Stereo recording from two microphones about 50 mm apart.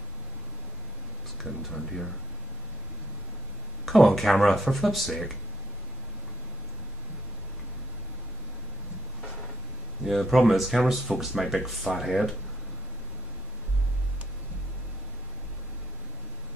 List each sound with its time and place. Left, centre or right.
1.4 s speech: centre
3.8 s speech: centre
10.0 s speech: centre